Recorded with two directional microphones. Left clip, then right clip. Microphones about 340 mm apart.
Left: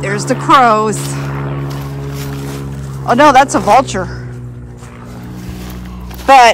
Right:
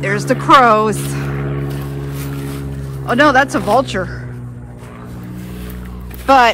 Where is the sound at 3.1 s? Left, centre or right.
Centre.